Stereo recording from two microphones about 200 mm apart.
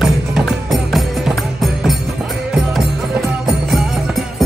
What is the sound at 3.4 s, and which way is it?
Music, 5° right (ahead or behind).